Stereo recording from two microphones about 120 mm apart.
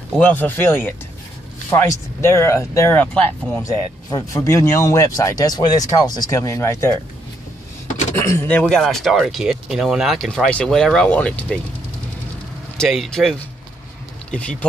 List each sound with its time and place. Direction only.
0.2 s speech: 15° left (ahead or behind)
3.6 s speech: 30° left (ahead or behind)
8.1 s speech: 20° left (ahead or behind)
12.7 s speech: centre (ahead or behind)